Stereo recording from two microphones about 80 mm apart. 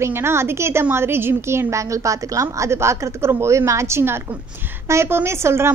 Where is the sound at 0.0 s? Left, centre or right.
Right.